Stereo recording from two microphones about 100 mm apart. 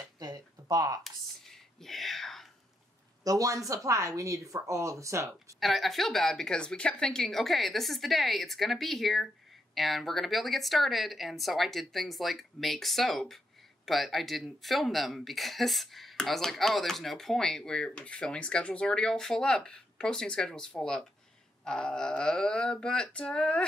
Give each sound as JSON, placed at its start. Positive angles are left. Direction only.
{"t": 0.2, "sound": "a sound", "side_deg": -40}
{"t": 1.0, "sound": "whispering", "side_deg": 5}
{"t": 3.3, "sound": "speech", "side_deg": -35}
{"t": 5.6, "sound": "speech", "side_deg": 0}